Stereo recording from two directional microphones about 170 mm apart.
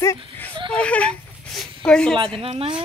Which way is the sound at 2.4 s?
35° right (ahead or behind).